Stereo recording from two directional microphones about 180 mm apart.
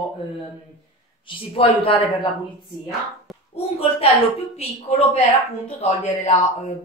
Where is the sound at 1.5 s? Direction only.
30° left (ahead or behind).